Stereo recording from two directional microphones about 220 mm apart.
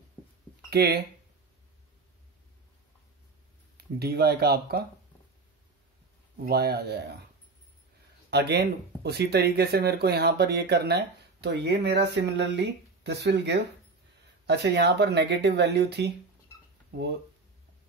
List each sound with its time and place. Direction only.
0.7 s speech: 45° right (ahead or behind)
3.7 s speech: 45° right (ahead or behind)
6.4 s speech: 45° right (ahead or behind)
8.3 s speech: 50° right (ahead or behind)